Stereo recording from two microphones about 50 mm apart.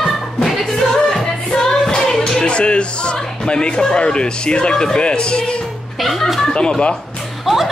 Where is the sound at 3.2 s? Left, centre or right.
Centre.